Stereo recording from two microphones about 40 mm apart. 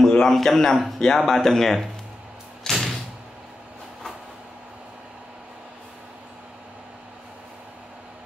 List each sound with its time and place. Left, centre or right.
0.1 s speech: centre
0.7 s a man's voice: centre
2.6 s music: centre